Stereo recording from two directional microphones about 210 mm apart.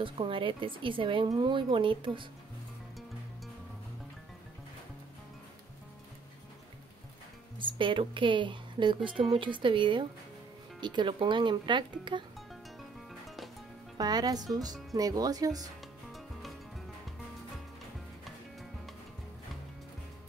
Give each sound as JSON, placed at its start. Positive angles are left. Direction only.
{"t": 0.0, "sound": "a woman's voice", "side_deg": -25}
{"t": 7.5, "sound": "a woman's voice", "side_deg": -25}
{"t": 13.9, "sound": "a woman's voice", "side_deg": -20}
{"t": 16.1, "sound": "music", "side_deg": 0}